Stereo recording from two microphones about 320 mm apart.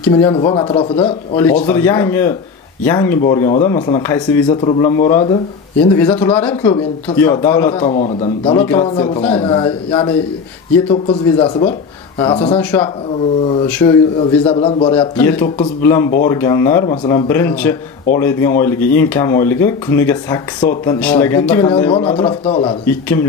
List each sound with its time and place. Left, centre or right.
0.1 s speech: centre
7.8 s speech: centre
8.5 s speech: centre
22.8 s a man's voice: centre